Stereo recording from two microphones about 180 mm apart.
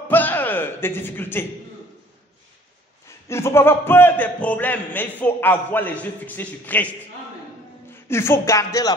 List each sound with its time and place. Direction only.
0.1 s music: 10° left (ahead or behind)
3.3 s a man's voice: 15° left (ahead or behind)
8.1 s a man's voice: 15° left (ahead or behind)